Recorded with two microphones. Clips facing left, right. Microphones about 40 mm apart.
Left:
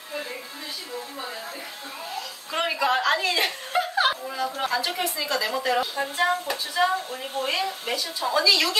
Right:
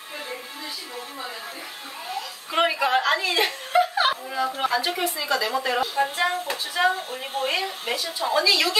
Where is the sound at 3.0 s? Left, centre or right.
Centre.